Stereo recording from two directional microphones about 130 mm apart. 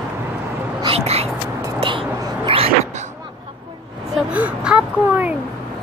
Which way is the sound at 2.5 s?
45° right (ahead or behind).